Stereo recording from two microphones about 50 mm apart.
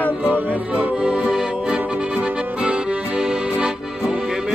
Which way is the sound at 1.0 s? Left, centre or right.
Right.